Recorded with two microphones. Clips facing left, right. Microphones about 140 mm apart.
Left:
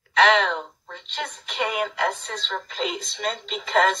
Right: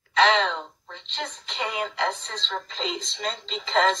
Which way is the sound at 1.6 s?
60° left (ahead or behind).